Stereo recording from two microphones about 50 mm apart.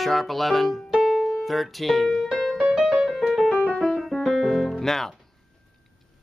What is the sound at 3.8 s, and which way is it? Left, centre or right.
Music, centre.